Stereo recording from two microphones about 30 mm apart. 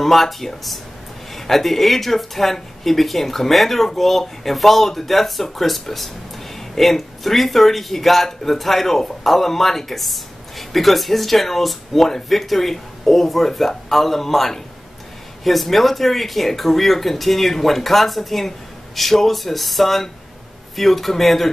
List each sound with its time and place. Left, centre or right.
0.0 s speech: centre